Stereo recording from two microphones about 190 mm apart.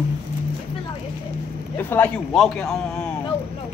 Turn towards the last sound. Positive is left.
turn(degrees=5)  # may be behind; listen again after turning